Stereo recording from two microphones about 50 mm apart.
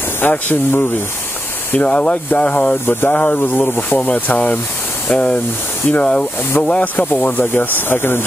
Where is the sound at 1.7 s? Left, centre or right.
Left.